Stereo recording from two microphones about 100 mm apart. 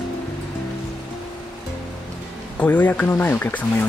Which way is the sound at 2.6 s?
15° left (ahead or behind).